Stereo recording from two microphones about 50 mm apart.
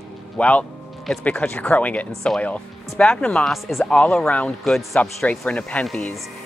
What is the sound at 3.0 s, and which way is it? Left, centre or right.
Speech, centre.